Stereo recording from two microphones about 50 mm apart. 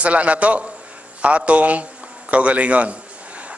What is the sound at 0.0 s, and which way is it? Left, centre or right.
A man's voice, right.